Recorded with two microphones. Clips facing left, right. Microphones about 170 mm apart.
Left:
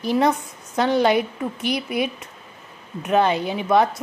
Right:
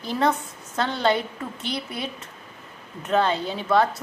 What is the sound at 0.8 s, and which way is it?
A woman's voice, 15° left (ahead or behind).